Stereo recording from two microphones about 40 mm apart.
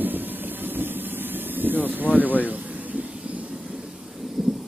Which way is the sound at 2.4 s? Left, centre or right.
Right.